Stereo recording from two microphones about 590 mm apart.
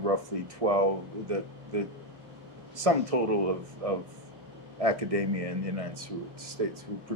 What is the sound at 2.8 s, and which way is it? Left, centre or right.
Speech, right.